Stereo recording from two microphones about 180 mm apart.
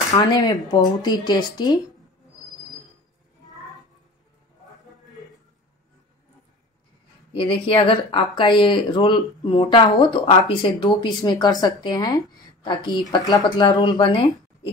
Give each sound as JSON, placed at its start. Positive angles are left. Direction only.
{"t": 0.1, "sound": "speech", "side_deg": 20}
{"t": 7.3, "sound": "speech", "side_deg": 30}